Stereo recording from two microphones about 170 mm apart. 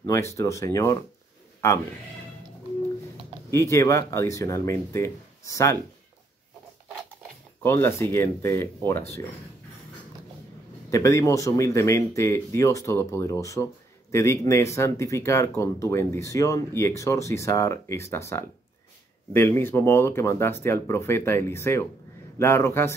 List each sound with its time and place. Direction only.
0.0 s speech: 15° left (ahead or behind)
3.4 s speech: 15° left (ahead or behind)
7.6 s speech: 15° left (ahead or behind)
10.9 s speech: 20° left (ahead or behind)